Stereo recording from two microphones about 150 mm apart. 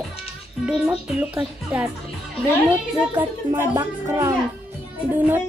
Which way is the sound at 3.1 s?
15° right (ahead or behind).